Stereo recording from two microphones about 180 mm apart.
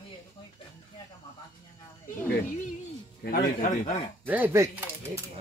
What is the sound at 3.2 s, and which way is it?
Speech, 55° left (ahead or behind).